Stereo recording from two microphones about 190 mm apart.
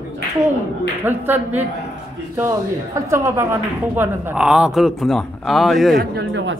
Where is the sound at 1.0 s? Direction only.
10° right (ahead or behind).